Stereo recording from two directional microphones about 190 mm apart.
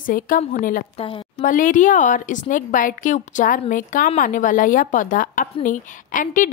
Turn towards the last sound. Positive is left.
turn(degrees=45)  # may be behind; listen again after turning